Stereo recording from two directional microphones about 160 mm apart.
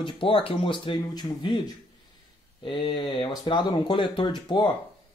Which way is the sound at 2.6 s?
30° left (ahead or behind).